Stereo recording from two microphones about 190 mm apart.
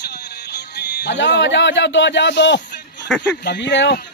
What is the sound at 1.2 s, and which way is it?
Speech, 65° left (ahead or behind).